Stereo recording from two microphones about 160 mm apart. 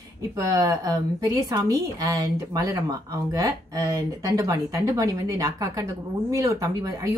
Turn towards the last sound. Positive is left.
turn(degrees=-20)  # may be behind; listen again after turning